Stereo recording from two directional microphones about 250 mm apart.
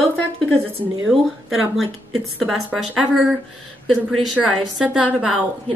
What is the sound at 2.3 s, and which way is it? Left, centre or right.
Speech, centre.